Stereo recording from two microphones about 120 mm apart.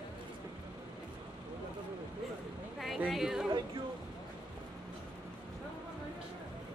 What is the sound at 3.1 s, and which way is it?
Speech, 5° right (ahead or behind).